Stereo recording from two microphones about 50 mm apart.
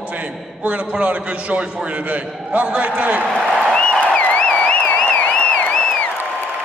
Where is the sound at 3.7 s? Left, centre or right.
Centre.